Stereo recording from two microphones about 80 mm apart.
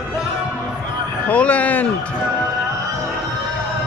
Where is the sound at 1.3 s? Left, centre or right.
Centre.